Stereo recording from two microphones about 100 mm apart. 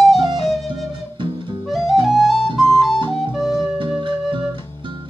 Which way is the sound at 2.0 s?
Centre (ahead or behind).